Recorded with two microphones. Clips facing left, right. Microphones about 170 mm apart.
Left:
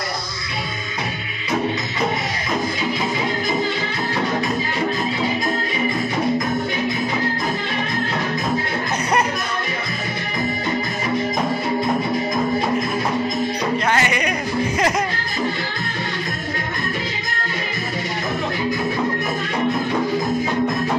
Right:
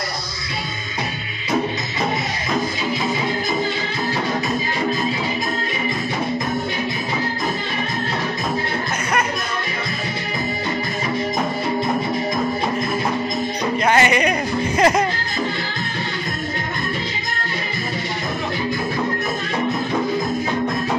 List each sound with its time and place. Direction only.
13.8 s music: 20° right (ahead or behind)